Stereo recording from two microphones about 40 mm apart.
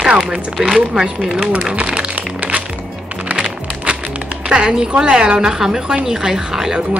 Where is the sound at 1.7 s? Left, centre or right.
Right.